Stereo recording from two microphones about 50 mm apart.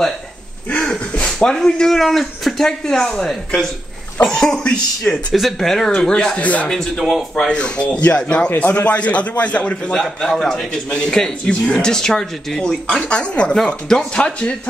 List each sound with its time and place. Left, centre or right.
0.7 s speech: left
5.3 s speech: centre
5.9 s a man's voice: centre
6.4 s a man's voice: left
7.0 s a man's voice: centre
7.3 s a man's voice: centre
10.0 s a man's voice: centre